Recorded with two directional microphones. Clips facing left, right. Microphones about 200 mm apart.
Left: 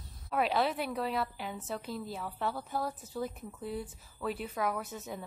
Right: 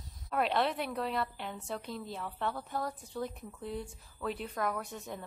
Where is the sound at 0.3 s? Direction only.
Centre (ahead or behind).